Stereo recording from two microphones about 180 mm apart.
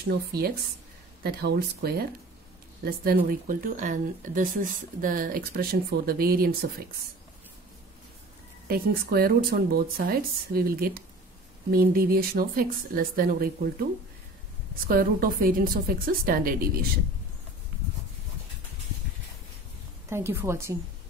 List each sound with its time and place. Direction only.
1.2 s speech: 60° right (ahead or behind)
8.6 s speech: 55° right (ahead or behind)
14.9 s speech: 55° right (ahead or behind)
20.1 s a woman's voice: 15° right (ahead or behind)